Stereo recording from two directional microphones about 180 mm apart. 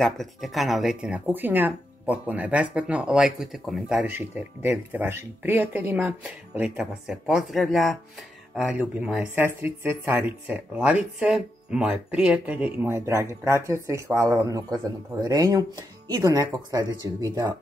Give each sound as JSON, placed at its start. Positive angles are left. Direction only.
{"t": 0.0, "sound": "speech", "side_deg": 0}